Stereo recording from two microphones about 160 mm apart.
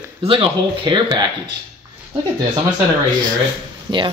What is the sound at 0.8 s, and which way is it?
Speech, 30° right (ahead or behind).